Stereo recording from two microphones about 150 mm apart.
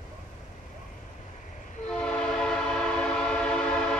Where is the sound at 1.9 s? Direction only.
5° left (ahead or behind).